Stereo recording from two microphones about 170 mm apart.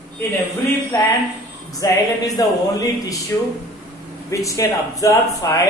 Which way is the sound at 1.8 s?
20° left (ahead or behind).